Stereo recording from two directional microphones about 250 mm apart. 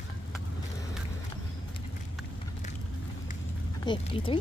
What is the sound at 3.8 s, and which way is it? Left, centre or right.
Speech, centre.